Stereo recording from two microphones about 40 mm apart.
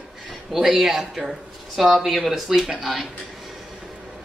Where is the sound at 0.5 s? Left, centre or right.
Centre.